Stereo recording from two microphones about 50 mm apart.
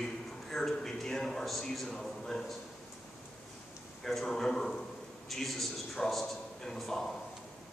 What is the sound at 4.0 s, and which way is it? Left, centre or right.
A man's voice, centre.